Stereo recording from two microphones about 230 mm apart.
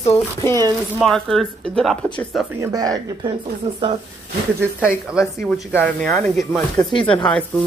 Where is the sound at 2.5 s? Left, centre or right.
Centre.